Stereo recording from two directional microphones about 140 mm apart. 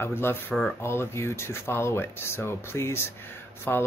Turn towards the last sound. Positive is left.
turn(degrees=15)  # may be behind; listen again after turning